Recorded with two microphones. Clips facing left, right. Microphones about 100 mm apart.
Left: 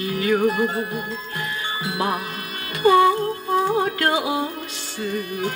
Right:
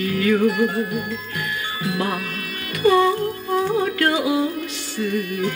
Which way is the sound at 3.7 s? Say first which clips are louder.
Right 1 dB; 30° left (ahead or behind).